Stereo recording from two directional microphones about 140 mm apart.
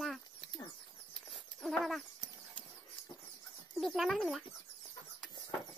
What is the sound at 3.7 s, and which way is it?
Speech, centre (ahead or behind).